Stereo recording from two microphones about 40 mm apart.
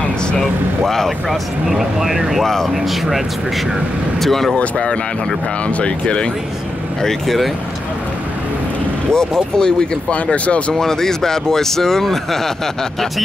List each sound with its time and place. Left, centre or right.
0.4 s speech: centre
1.7 s speech: centre
2.4 s speech: centre
2.7 s speech: centre
4.2 s speech: centre
5.8 s speech: left
7.2 s speech: centre
9.1 s speech: centre
10.1 s speech: left
10.7 s speech: centre